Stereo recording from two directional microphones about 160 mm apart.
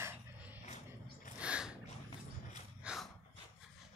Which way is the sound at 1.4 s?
5° right (ahead or behind).